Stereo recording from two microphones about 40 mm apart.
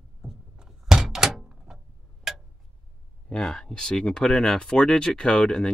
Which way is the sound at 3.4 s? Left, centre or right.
Centre.